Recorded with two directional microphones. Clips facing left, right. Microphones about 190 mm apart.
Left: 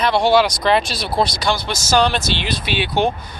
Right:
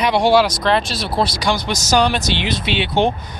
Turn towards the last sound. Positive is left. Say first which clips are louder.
# right 1 dB
turn(degrees=-25)  # may be behind; listen again after turning